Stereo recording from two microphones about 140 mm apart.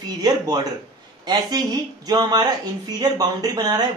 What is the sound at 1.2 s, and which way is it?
Speech, 30° right (ahead or behind).